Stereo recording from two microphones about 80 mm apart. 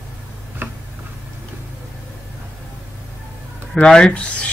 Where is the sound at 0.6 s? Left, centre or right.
Right.